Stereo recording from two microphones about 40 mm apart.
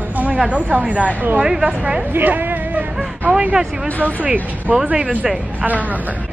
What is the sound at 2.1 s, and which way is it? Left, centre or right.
Speech, right.